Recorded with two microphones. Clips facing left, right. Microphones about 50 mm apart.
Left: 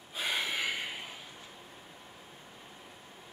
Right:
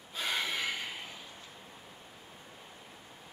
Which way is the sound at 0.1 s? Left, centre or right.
Centre.